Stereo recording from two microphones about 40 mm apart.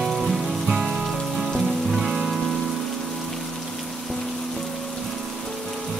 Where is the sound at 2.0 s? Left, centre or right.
Centre.